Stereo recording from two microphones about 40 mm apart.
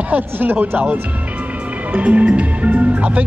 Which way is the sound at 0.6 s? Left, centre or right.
Right.